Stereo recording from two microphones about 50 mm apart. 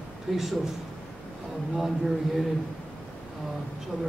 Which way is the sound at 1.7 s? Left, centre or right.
Centre.